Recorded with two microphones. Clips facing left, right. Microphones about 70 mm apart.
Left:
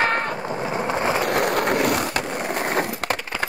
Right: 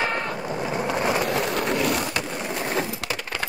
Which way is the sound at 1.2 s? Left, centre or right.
Left.